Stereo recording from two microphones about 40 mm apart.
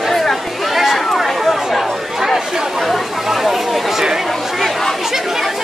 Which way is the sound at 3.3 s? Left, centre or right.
Centre.